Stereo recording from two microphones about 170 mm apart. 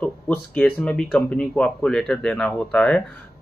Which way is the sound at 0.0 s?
5° left (ahead or behind).